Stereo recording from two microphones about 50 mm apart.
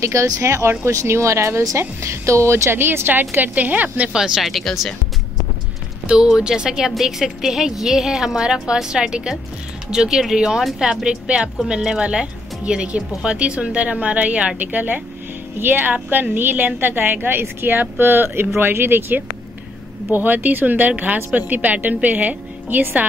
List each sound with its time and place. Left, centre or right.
0.0 s speech: right
3.1 s a woman's voice: right
4.1 s a woman's voice: centre
4.4 s speech: centre
6.0 s a woman's voice: centre; by 23.0 s right